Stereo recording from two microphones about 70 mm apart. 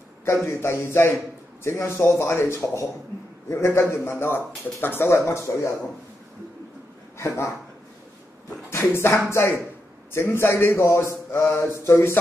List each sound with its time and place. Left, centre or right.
0.5 s a man's voice: left
7.2 s speech: left
8.9 s a man's voice: left